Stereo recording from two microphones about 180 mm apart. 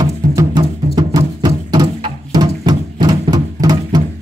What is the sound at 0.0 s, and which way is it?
Music, 20° right (ahead or behind).